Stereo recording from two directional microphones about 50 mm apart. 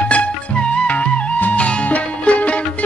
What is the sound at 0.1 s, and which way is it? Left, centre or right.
Music, left.